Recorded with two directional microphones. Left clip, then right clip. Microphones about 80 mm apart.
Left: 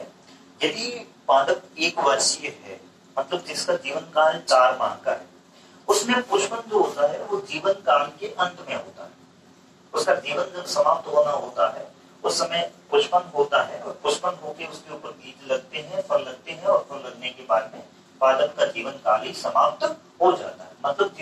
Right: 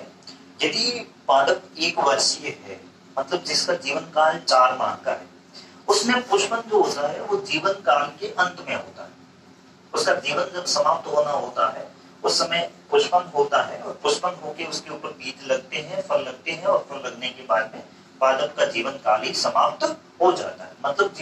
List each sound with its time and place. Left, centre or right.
0.6 s a man's voice: right
3.2 s a man's voice: right
10.1 s a man's voice: right